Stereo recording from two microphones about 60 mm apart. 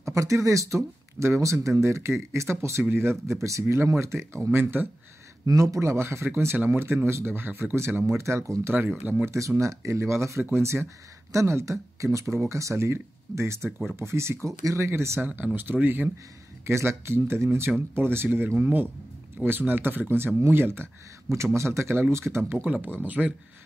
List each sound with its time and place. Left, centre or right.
0.0 s speech: right
3.6 s speech: right
4.5 s speech: right
5.5 s speech: right
14.6 s speech: right
14.9 s speech: right
15.5 s speech: right
16.6 s speech: right
22.5 s speech: right